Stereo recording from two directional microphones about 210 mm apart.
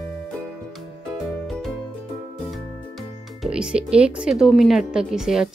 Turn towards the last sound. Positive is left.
turn(degrees=0)  # may be behind; listen again after turning